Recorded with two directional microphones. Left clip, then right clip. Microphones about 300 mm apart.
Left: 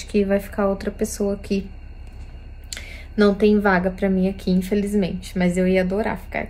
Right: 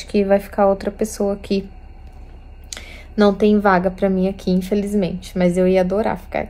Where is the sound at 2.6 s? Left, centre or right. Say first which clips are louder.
Right 1 dB; centre.